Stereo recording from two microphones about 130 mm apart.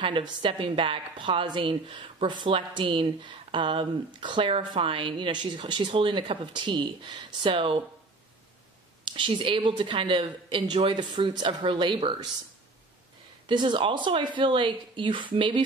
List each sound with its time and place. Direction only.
0.0 s a woman's voice: 40° right (ahead or behind)
9.0 s a woman's voice: 40° right (ahead or behind)
13.5 s a woman's voice: 40° right (ahead or behind)